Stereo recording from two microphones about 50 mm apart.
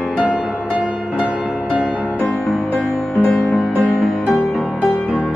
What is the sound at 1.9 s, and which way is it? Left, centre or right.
Music, right.